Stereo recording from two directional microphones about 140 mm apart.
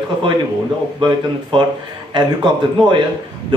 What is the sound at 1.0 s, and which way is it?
Speech, 35° right (ahead or behind).